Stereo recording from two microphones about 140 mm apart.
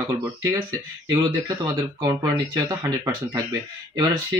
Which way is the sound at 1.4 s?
25° right (ahead or behind).